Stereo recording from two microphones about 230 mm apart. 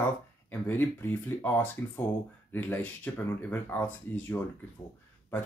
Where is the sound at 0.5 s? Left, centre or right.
Centre.